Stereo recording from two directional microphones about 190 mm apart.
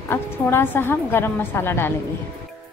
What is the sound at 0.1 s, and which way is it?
A woman's voice, 10° left (ahead or behind).